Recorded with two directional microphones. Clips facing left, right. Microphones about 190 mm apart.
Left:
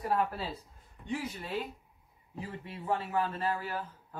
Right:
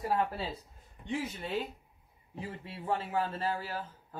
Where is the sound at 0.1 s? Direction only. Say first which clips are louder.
Left 1 dB; 25° right (ahead or behind).